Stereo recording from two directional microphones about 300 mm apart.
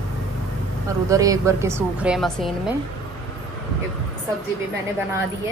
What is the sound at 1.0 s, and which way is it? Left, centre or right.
A woman's voice, centre.